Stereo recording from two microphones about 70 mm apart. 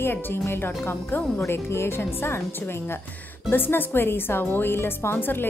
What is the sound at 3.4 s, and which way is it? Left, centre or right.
A woman's voice, left.